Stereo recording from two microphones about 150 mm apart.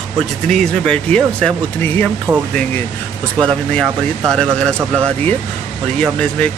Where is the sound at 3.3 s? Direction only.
5° left (ahead or behind).